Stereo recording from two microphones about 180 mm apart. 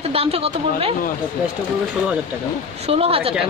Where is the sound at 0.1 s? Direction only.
35° right (ahead or behind).